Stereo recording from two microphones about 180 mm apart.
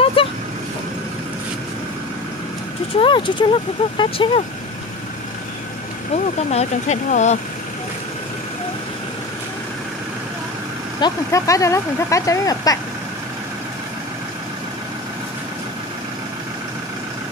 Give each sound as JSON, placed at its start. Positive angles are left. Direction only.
{"t": 0.0, "sound": "vehicle", "side_deg": 30}
{"t": 3.0, "sound": "speech", "side_deg": 25}
{"t": 6.1, "sound": "speech", "side_deg": 40}
{"t": 11.0, "sound": "speech", "side_deg": 20}